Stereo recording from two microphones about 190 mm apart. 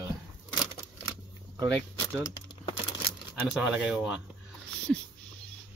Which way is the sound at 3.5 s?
5° right (ahead or behind).